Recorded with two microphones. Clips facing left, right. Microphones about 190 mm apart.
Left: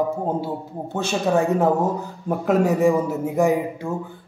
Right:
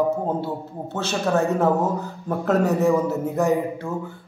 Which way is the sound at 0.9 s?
15° left (ahead or behind).